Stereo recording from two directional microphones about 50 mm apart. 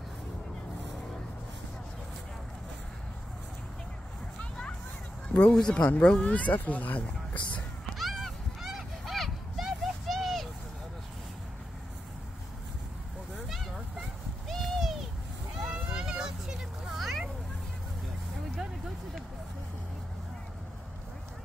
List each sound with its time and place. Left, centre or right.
5.5 s speech: centre
8.0 s honk: centre
14.5 s owl: centre
15.6 s vehicle: centre